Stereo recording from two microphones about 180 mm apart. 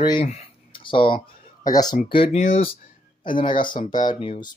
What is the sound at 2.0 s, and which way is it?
Speech, 30° left (ahead or behind).